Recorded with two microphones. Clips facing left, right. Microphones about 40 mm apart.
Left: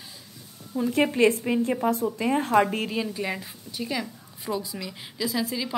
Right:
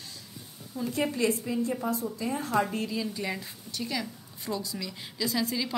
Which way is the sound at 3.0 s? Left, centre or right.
Left.